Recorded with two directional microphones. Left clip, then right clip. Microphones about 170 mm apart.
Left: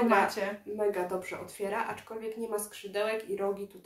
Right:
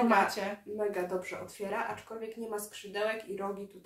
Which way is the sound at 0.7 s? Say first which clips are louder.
Left 3 dB; 15° left (ahead or behind).